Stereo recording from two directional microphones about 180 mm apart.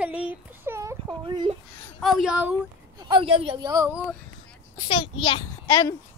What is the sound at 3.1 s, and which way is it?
Speech, 30° right (ahead or behind).